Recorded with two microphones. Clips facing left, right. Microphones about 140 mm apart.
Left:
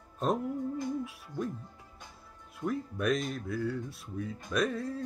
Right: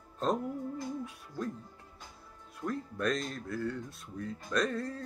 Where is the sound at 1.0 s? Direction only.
5° left (ahead or behind).